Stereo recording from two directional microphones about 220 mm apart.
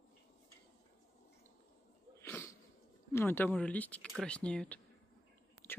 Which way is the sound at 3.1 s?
10° left (ahead or behind).